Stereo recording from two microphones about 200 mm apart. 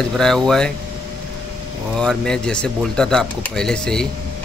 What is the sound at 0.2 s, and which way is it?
Speech, centre (ahead or behind).